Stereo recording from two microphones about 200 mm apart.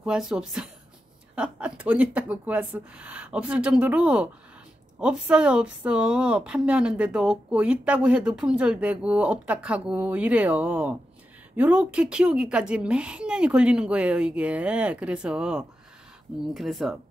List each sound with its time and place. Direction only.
0.0 s speech: 5° right (ahead or behind)